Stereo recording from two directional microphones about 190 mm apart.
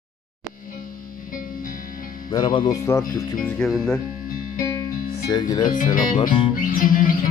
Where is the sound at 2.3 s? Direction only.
25° left (ahead or behind).